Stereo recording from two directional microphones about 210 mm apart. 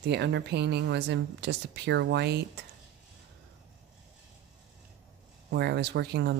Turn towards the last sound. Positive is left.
turn(degrees=-55)  # may be behind; listen again after turning